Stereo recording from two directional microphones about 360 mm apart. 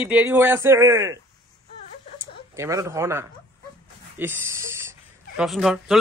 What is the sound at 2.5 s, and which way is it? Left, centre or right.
Speech, centre.